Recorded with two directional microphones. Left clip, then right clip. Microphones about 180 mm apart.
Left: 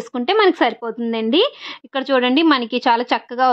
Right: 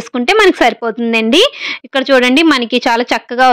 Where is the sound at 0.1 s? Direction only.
20° right (ahead or behind).